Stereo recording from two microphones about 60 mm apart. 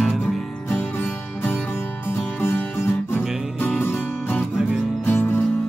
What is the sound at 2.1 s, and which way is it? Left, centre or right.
Music, left.